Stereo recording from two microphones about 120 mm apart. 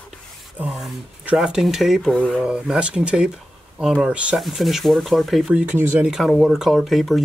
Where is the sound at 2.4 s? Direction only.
5° right (ahead or behind).